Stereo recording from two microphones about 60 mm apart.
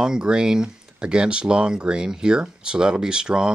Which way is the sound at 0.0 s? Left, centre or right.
Centre.